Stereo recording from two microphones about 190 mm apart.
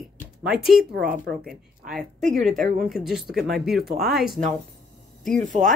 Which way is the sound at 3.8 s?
55° right (ahead or behind).